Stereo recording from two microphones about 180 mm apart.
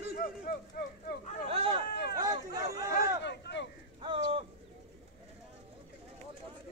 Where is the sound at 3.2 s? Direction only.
70° left (ahead or behind).